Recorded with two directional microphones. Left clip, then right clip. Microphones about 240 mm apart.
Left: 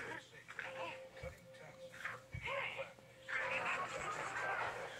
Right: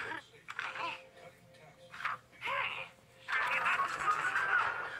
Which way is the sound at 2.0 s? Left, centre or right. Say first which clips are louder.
Right 8 dB; right.